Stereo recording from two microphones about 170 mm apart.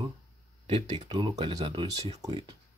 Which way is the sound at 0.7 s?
35° right (ahead or behind).